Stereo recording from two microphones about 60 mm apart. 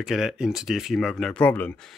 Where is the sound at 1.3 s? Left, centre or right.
Left.